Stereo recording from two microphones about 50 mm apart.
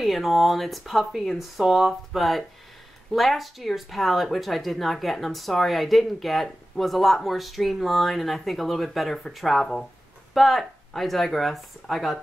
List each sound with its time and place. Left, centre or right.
0.0 s speech: centre